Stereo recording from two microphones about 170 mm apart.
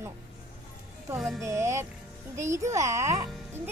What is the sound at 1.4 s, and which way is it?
Speech, 15° right (ahead or behind).